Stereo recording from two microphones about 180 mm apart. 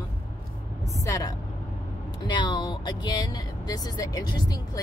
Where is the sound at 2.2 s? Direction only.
25° left (ahead or behind).